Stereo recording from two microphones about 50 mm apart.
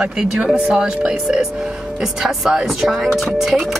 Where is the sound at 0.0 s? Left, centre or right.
Centre.